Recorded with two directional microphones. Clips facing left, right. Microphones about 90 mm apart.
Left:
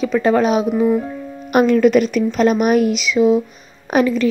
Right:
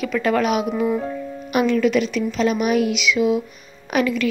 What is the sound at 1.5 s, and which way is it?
A woman's voice, 45° left (ahead or behind).